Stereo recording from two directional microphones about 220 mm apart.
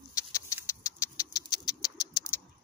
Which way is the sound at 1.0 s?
15° left (ahead or behind).